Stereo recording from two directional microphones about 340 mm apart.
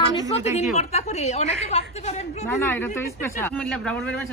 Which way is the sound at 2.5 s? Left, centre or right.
Centre.